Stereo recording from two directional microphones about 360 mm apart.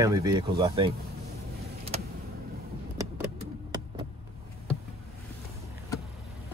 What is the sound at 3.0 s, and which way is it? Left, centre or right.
Vehicle, centre.